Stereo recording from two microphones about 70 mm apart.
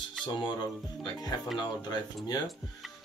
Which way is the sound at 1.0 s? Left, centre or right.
Left.